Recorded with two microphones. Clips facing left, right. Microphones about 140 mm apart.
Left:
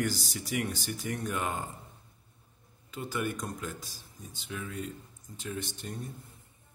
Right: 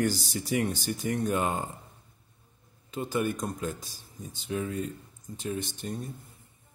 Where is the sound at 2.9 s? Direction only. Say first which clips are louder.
Right 5 dB; 25° right (ahead or behind).